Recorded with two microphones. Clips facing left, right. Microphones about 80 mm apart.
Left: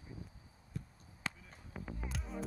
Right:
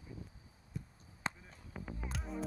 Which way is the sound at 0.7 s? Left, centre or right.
Centre.